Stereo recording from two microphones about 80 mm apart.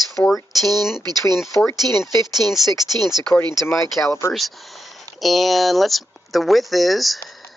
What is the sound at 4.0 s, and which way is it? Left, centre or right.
Speech, left.